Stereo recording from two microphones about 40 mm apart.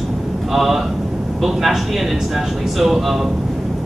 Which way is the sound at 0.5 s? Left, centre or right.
Centre.